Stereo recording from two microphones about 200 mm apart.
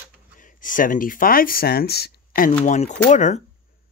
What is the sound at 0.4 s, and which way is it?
Speech, 40° left (ahead or behind).